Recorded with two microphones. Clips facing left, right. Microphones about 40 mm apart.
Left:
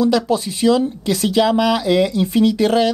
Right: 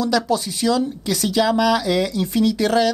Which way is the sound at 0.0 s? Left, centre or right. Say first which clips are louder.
Left 3 dB; centre.